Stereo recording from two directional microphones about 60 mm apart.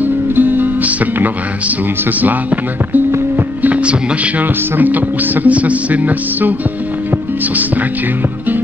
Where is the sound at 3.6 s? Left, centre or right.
Right.